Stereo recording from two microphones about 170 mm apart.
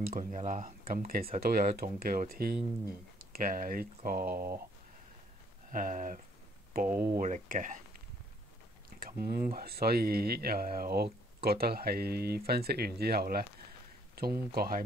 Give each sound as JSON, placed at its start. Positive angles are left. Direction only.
{"t": 0.0, "sound": "speech", "side_deg": -55}
{"t": 5.7, "sound": "speech", "side_deg": -50}
{"t": 6.9, "sound": "speech", "side_deg": -10}
{"t": 7.2, "sound": "speech", "side_deg": -50}
{"t": 9.0, "sound": "speech", "side_deg": -60}